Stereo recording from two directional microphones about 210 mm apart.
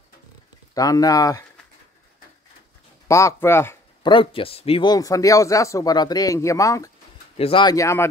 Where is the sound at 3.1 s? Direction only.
15° left (ahead or behind).